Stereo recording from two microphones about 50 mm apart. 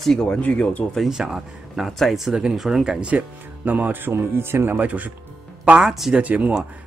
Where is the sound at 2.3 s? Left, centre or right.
Centre; by 4.7 s right.